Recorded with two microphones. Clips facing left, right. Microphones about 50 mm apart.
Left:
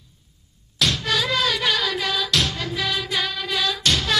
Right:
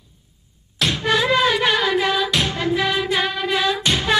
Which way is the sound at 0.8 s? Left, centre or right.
Right.